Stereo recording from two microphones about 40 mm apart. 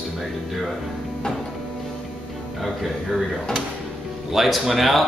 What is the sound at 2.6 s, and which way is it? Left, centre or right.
Speech, centre.